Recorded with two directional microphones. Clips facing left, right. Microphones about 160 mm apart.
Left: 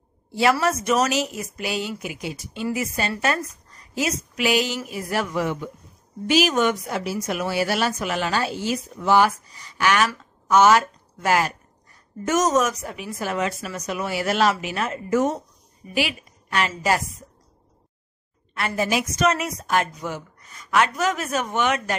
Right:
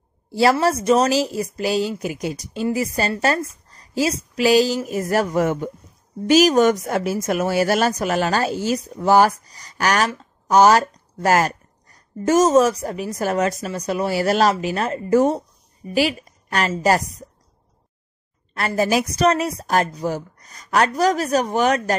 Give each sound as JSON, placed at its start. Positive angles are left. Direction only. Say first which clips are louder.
{"t": 0.3, "sound": "speech", "louder": "right 3 dB", "side_deg": -35}
{"t": 18.5, "sound": "speech", "louder": "right 4 dB", "side_deg": -35}